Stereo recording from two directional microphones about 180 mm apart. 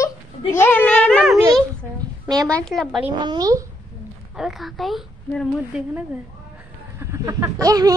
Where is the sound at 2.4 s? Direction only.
5° left (ahead or behind).